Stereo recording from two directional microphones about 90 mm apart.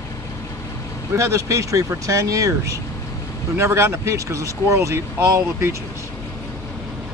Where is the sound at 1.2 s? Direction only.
35° right (ahead or behind).